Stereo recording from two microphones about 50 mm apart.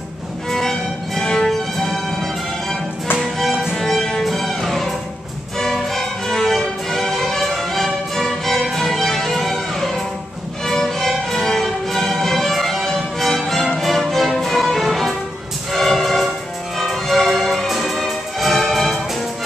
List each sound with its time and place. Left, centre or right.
0.5 s music: centre